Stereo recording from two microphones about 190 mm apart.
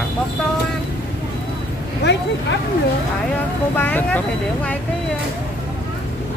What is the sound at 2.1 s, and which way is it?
Speech, 65° left (ahead or behind).